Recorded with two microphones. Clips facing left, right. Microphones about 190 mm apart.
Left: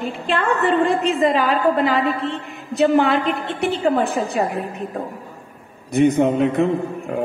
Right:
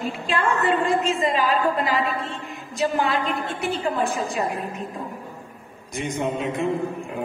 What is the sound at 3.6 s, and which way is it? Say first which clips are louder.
Speech: left 6 dB; 65° left (ahead or behind).